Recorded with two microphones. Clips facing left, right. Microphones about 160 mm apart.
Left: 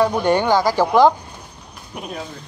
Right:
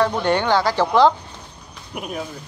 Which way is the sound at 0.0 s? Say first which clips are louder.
Left 2 dB; 10° left (ahead or behind).